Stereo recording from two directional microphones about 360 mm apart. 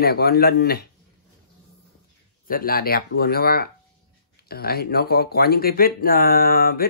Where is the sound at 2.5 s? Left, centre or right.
Left.